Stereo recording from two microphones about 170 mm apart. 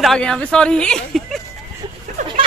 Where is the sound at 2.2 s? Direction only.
45° right (ahead or behind).